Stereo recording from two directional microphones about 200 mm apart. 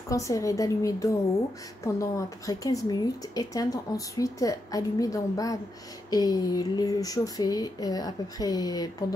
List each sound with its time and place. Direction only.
0.1 s a woman's voice: 15° left (ahead or behind)